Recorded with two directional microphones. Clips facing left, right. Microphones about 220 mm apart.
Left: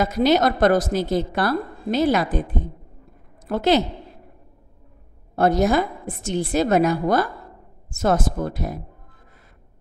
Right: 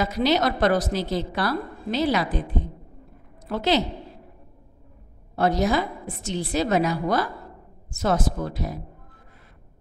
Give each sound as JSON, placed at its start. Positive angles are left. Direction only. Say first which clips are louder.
{"t": 0.0, "sound": "a woman's voice", "louder": "left 4 dB", "side_deg": 50}
{"t": 5.3, "sound": "a woman's voice", "louder": "left 4 dB", "side_deg": 50}